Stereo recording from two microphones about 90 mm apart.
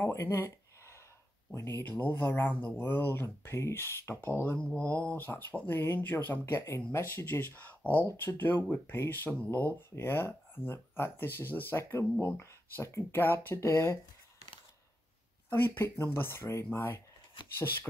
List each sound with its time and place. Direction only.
0.0 s a sound: 30° left (ahead or behind)
1.5 s speech: 30° left (ahead or behind)
4.6 s speech: 15° left (ahead or behind)
7.8 s speech: 25° right (ahead or behind)
8.2 s speech: 25° left (ahead or behind)
15.5 s speech: 25° left (ahead or behind)